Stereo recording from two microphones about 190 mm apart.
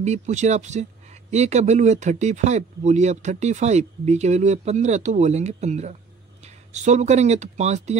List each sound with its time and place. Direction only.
0.0 s speech: 40° right (ahead or behind)